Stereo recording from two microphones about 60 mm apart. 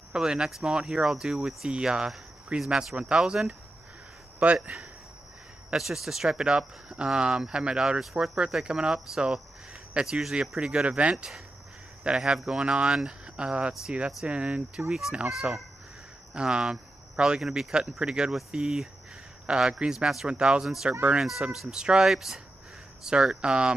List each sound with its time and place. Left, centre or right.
0.1 s speech: centre
4.6 s speech: centre
8.0 s speech: centre
10.7 s speech: centre
14.9 s speech: centre
20.6 s speech: centre